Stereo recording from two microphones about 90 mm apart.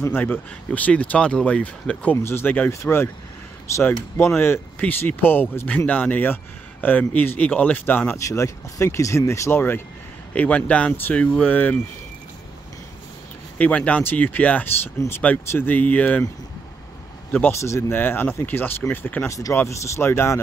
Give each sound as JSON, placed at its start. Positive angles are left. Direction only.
{"t": 0.0, "sound": "speech", "side_deg": 25}
{"t": 2.1, "sound": "speech", "side_deg": 30}
{"t": 4.2, "sound": "speech", "side_deg": 25}
{"t": 8.2, "sound": "speech", "side_deg": 35}
{"t": 13.6, "sound": "speech", "side_deg": 15}
{"t": 17.3, "sound": "speech", "side_deg": 25}
{"t": 19.2, "sound": "speech", "side_deg": 40}